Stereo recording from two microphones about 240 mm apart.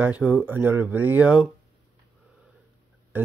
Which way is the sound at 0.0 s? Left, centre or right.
Centre.